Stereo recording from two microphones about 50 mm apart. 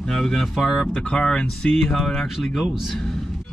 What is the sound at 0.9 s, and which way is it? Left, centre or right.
Speech, centre.